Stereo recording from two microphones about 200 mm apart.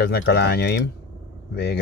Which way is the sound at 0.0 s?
55° left (ahead or behind).